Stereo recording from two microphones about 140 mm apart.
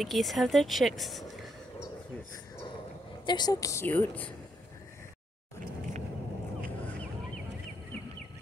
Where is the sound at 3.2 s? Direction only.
30° left (ahead or behind); by 4.3 s 15° left (ahead or behind).